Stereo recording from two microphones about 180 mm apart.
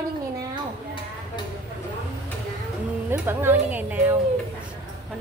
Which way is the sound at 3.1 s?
10° right (ahead or behind).